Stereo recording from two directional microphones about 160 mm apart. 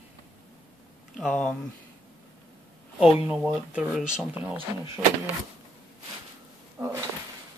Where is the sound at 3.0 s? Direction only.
5° right (ahead or behind).